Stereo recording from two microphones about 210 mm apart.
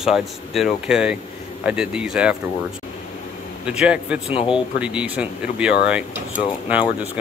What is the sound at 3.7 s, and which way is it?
Speech, 5° right (ahead or behind).